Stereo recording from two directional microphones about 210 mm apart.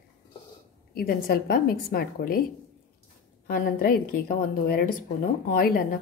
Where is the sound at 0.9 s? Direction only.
45° left (ahead or behind).